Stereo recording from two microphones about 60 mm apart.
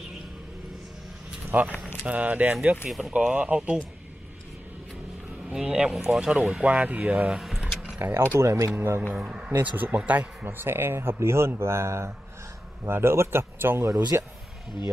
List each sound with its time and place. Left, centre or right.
1.5 s speech: right
5.5 s speech: centre
6.9 s speech: right
7.2 s a sound: centre
8.1 s speech: right
9.1 s speech: centre
9.6 s speech: right